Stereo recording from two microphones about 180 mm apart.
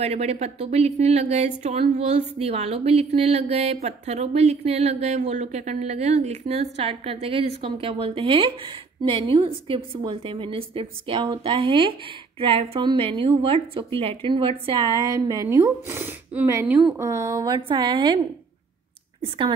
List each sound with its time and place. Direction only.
0.0 s a woman's voice: 35° right (ahead or behind)
19.2 s a woman's voice: 30° right (ahead or behind)